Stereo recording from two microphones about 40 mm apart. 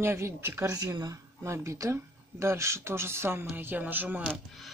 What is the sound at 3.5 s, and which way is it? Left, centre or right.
Music, right.